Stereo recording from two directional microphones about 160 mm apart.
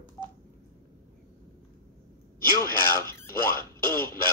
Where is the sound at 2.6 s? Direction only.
20° left (ahead or behind).